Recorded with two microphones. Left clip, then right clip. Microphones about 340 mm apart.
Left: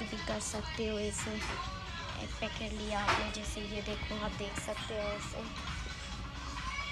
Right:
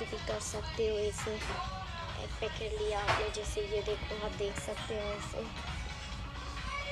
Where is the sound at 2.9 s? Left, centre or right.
Centre.